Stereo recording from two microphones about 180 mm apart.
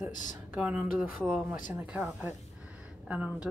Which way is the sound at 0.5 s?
5° right (ahead or behind).